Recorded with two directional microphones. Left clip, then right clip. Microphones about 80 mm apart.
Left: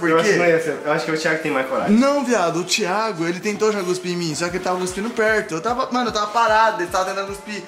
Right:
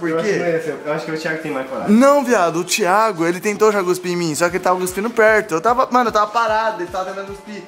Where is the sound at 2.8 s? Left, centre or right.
Right.